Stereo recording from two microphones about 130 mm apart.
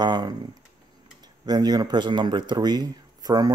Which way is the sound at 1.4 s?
30° right (ahead or behind).